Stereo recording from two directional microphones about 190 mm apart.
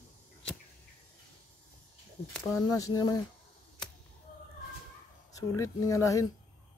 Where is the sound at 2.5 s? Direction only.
15° left (ahead or behind).